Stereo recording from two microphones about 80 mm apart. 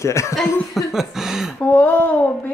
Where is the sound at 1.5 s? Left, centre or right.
Left.